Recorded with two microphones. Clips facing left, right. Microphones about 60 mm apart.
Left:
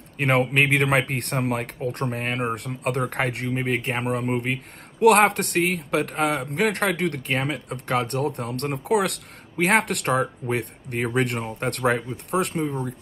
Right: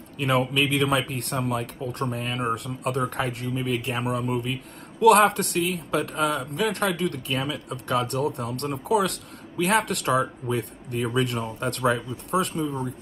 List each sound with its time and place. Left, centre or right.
0.2 s a man's voice: left